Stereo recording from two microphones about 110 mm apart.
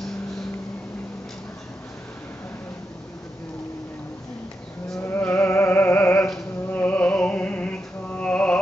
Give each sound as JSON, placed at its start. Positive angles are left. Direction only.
{"t": 5.0, "sound": "music", "side_deg": 20}
{"t": 6.1, "sound": "music", "side_deg": 0}
{"t": 6.7, "sound": "music", "side_deg": 15}